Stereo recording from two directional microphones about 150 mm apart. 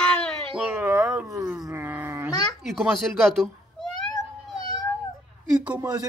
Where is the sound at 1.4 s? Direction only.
25° right (ahead or behind).